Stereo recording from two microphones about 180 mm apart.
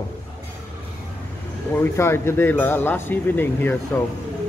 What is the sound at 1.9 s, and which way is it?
Speech, 15° left (ahead or behind).